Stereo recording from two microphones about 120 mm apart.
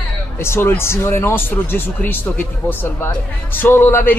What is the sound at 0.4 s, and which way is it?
Speech, 20° left (ahead or behind).